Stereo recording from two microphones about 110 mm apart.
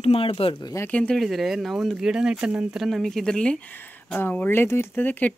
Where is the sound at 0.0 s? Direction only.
60° left (ahead or behind).